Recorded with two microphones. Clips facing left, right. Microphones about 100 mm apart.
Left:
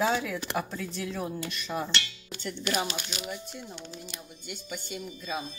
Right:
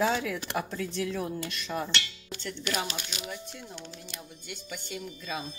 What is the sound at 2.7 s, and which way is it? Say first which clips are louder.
Music: left 2 dB; 10° left (ahead or behind).